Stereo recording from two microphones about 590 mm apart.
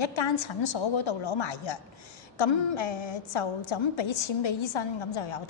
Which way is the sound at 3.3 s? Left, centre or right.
Left.